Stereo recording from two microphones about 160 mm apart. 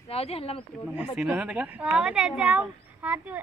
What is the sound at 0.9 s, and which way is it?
Speech, 5° right (ahead or behind).